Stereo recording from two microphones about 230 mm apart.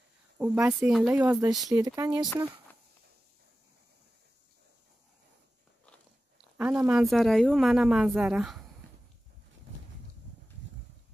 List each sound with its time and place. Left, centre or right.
0.4 s speech: centre
1.1 s speech: centre
6.6 s speech: centre